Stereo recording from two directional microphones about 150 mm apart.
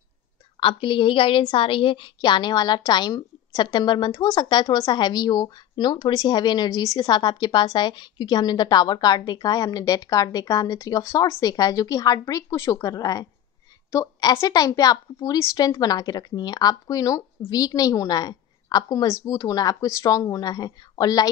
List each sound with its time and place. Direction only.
0.6 s a woman's voice: 35° left (ahead or behind)